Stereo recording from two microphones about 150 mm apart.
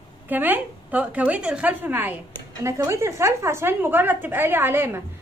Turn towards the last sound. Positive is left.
turn(degrees=-15)  # may be behind; listen again after turning